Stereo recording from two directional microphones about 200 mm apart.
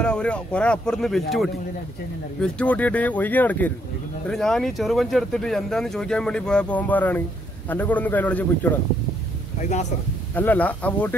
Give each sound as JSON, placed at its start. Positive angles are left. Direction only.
{"t": 0.0, "sound": "speech", "side_deg": 5}
{"t": 9.6, "sound": "speech", "side_deg": 35}
{"t": 10.3, "sound": "speech", "side_deg": 10}